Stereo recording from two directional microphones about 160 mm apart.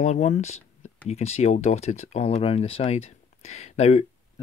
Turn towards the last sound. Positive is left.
turn(degrees=40)  # may be behind; listen again after turning